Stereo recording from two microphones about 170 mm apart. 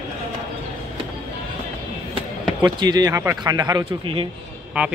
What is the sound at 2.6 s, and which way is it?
Speech, 25° right (ahead or behind).